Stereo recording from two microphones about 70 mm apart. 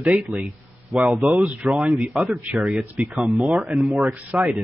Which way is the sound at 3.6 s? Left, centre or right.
Centre.